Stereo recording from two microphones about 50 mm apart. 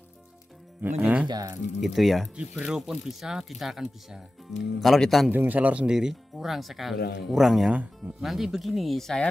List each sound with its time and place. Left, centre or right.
0.9 s speech: right
1.8 s speech: centre
2.6 s speech: centre
5.3 s a man's voice: right
5.9 s speech: centre